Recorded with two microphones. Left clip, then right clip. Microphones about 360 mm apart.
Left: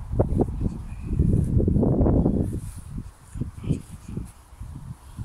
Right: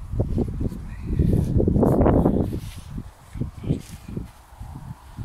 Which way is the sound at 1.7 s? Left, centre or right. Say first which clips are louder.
Right 5 dB; right.